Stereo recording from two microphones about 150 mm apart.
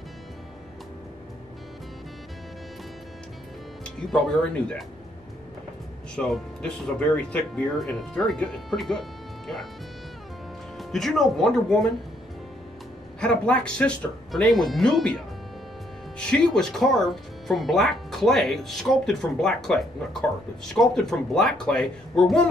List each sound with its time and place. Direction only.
3.8 s speech: 5° left (ahead or behind)
6.1 s speech: 5° left (ahead or behind)
10.8 s speech: centre (ahead or behind)
13.2 s speech: 5° left (ahead or behind)